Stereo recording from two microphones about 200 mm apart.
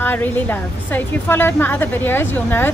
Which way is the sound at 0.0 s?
10° left (ahead or behind).